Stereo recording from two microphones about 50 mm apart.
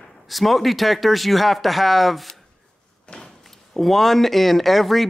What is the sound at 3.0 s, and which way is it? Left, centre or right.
Door, centre.